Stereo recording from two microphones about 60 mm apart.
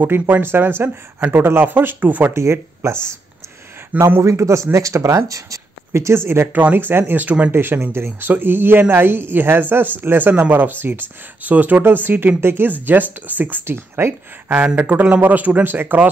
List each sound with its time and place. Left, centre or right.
0.0 s speech: right
2.3 s speech: right
4.2 s a man's voice: right
7.5 s speech: right
14.8 s a man's voice: right